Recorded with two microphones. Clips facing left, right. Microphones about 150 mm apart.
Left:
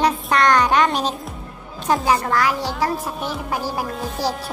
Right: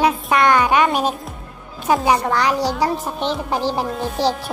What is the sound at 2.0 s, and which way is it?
A woman's voice, 25° right (ahead or behind).